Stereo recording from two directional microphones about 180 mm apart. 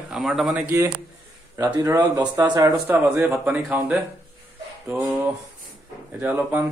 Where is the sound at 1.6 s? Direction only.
20° right (ahead or behind).